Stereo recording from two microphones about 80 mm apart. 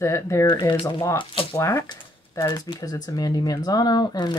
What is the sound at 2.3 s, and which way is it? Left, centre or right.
Speech, left.